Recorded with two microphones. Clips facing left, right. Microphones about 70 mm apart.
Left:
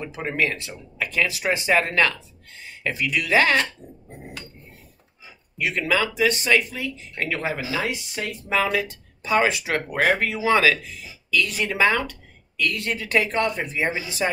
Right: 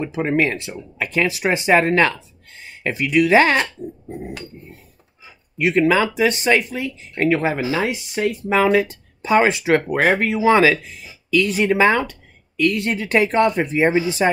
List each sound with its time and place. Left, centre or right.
0.0 s speech: right
5.6 s speech: right